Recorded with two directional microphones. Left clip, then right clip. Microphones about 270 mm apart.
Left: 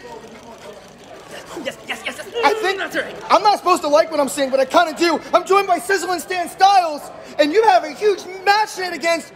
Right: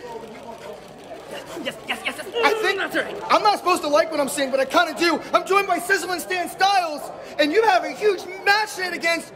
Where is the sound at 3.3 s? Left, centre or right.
Centre.